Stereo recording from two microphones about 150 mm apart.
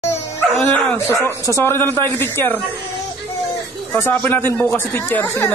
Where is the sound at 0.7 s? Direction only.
10° left (ahead or behind).